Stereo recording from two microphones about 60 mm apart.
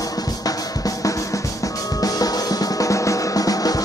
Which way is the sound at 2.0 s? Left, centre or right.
Left.